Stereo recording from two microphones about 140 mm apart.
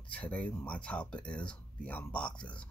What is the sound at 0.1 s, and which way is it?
Speech, 10° left (ahead or behind).